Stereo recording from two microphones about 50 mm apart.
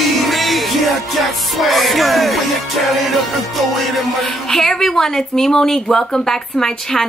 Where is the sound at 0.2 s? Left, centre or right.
Centre.